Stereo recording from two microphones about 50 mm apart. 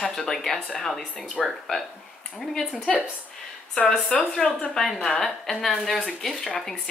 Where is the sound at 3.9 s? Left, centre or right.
Centre.